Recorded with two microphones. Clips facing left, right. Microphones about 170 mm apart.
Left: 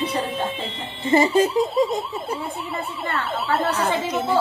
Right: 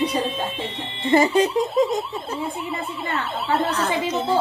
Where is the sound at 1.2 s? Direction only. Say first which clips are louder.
Left 1 dB; 5° left (ahead or behind).